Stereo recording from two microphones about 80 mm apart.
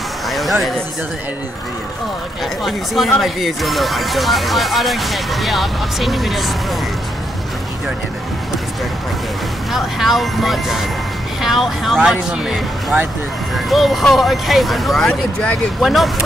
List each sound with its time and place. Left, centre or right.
0.3 s a sound: centre
2.6 s speech: centre
9.7 s speech: centre
13.7 s speech: centre
15.0 s speech: centre
15.8 s speech: centre